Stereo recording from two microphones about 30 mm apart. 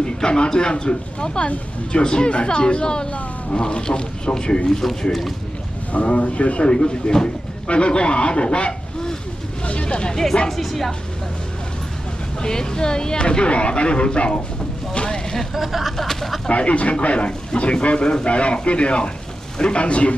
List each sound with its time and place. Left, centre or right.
0.0 s speech: left
4.8 s a woman's voice: centre
6.0 s speech: left
6.7 s speech: left
10.5 s a woman's voice: centre
12.4 s speech: left
15.5 s speech: centre
16.0 s a woman's voice: centre
16.4 s speech: left